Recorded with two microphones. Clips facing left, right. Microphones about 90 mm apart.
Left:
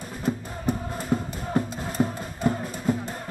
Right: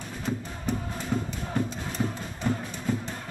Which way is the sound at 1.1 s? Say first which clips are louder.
Left 4 dB; 40° left (ahead or behind).